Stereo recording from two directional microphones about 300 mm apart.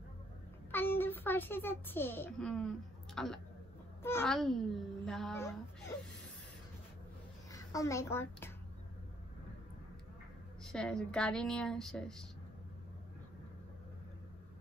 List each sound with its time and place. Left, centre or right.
0.7 s a child's voice: centre
7.5 s a woman's voice: centre
10.6 s speech: centre